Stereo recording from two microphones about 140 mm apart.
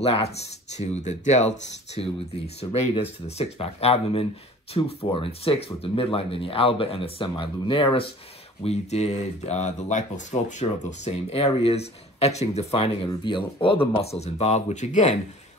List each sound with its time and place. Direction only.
0.0 s speech: 45° left (ahead or behind)
0.7 s speech: 55° left (ahead or behind)